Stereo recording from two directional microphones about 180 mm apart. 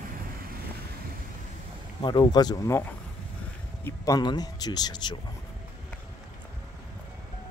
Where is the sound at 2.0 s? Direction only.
25° left (ahead or behind).